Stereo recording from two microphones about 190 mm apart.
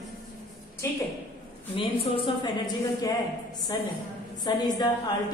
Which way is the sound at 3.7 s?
25° left (ahead or behind).